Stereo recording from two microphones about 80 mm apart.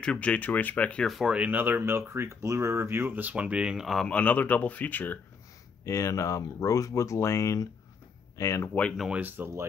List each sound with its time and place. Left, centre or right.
0.0 s speech: centre
1.0 s speech: centre
1.3 s speech: right
3.8 s speech: centre
4.1 s speech: centre
5.9 s speech: left
8.6 s speech: centre
9.1 s speech: right